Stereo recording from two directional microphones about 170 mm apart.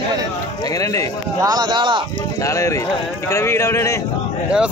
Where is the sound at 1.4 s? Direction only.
25° right (ahead or behind).